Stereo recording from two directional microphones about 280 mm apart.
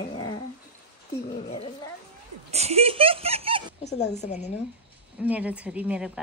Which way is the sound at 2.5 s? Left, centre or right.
Right.